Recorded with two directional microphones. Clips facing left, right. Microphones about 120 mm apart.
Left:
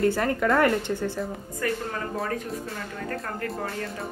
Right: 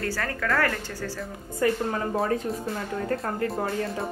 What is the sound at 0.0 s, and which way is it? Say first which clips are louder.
Speech: left 7 dB; 25° left (ahead or behind).